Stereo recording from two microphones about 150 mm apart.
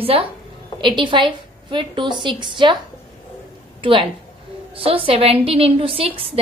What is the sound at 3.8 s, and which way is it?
A woman's voice, 35° right (ahead or behind).